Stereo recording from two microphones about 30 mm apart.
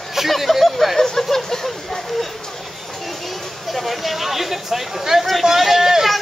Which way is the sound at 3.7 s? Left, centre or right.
Centre.